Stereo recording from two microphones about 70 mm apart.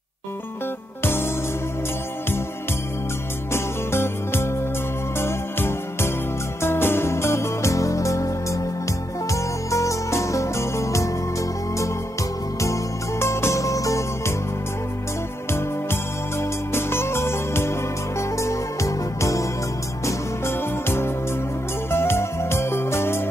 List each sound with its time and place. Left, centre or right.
1.0 s music: left
3.5 s music: left
13.2 s music: left
15.5 s music: left
20.1 s music: left